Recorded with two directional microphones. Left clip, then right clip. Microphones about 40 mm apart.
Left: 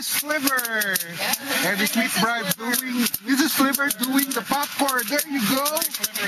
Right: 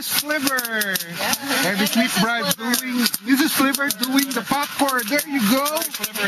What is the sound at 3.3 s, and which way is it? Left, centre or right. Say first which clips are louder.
Speech: right 2 dB; left.